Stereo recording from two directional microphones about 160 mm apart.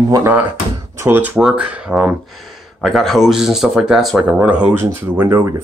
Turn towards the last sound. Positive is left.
turn(degrees=-20)  # may be behind; listen again after turning